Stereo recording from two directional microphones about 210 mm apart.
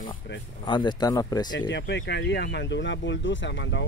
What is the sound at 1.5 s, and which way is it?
Speech, 55° left (ahead or behind).